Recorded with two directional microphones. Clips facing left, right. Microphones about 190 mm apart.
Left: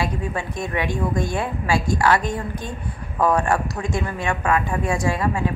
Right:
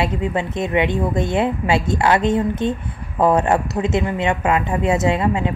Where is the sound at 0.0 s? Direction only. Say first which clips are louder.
Right 5 dB; 20° right (ahead or behind).